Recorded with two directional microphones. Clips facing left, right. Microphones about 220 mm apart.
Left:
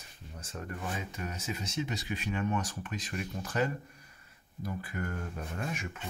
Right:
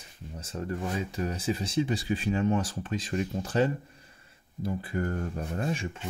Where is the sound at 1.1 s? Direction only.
35° right (ahead or behind).